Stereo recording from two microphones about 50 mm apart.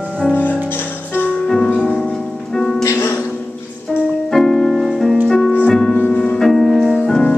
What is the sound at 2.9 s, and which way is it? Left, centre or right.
Music, left.